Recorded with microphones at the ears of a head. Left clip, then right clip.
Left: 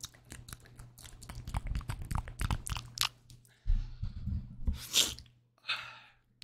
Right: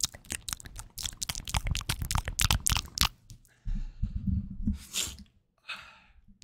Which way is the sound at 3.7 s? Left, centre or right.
Right.